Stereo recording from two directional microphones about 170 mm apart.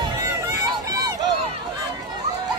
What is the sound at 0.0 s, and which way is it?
Run, 20° right (ahead or behind).